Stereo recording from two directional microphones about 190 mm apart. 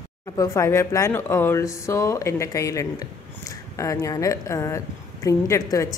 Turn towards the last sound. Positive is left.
turn(degrees=15)  # may be behind; listen again after turning